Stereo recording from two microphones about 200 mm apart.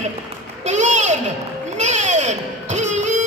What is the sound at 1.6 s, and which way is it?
Music, 35° right (ahead or behind).